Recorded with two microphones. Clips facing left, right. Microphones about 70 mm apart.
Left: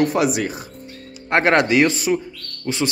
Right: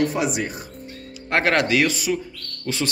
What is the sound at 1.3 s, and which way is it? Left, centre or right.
Speech, left.